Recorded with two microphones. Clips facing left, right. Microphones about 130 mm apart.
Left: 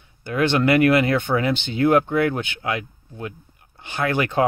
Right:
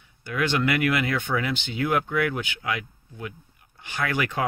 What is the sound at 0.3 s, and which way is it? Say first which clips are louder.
Speech: left 6 dB; 35° left (ahead or behind).